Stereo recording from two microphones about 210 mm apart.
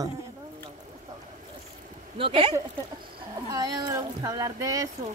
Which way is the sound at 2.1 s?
25° right (ahead or behind).